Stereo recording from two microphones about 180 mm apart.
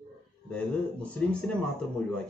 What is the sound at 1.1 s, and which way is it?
Speech, 5° left (ahead or behind).